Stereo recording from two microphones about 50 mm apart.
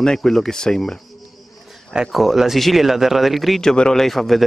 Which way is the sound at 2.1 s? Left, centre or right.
Centre.